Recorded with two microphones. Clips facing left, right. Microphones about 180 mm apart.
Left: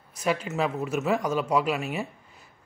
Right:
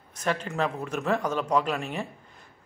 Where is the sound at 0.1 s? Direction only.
10° left (ahead or behind).